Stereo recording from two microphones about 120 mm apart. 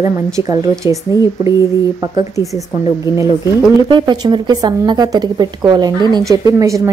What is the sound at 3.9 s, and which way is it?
A woman's voice, 35° right (ahead or behind).